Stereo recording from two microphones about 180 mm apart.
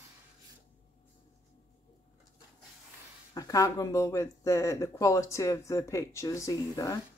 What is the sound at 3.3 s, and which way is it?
Speech, 20° left (ahead or behind).